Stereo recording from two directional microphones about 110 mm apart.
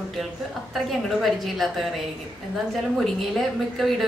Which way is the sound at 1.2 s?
Centre (ahead or behind).